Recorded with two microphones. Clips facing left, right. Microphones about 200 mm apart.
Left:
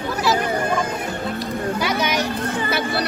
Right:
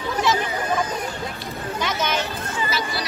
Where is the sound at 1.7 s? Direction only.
10° left (ahead or behind).